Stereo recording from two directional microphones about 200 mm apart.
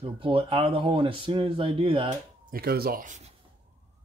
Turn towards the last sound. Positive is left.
turn(degrees=-35)  # may be behind; listen again after turning